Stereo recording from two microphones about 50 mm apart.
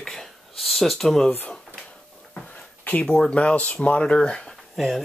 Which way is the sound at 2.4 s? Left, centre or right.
Left.